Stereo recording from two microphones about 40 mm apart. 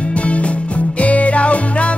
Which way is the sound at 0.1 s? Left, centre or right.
Left.